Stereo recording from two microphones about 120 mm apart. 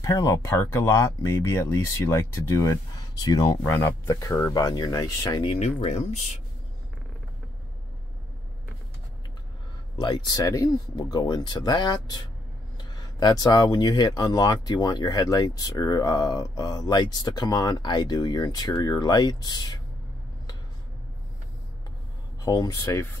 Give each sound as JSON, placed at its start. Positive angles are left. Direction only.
{"t": 0.0, "sound": "speech", "side_deg": 30}
{"t": 5.9, "sound": "speech", "side_deg": 70}
{"t": 9.9, "sound": "speech", "side_deg": 35}
{"t": 22.4, "sound": "speech", "side_deg": 30}